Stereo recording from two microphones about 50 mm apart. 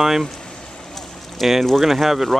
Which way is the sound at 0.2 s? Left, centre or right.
Centre.